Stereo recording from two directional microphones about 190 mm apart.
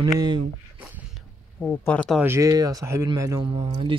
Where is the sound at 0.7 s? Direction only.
10° right (ahead or behind).